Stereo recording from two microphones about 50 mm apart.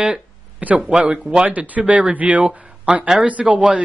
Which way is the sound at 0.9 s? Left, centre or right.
Right.